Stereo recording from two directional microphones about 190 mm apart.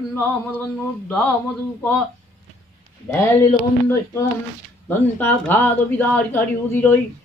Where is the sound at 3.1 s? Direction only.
15° left (ahead or behind).